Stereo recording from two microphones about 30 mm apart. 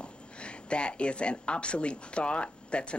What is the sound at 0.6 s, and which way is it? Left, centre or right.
Speech, left.